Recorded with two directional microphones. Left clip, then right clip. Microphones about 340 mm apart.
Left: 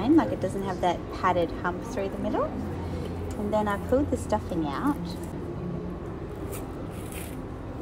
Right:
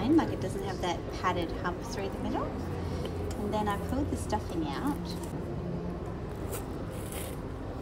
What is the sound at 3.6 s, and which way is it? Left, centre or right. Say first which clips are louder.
A woman's voice: left 7 dB; centre.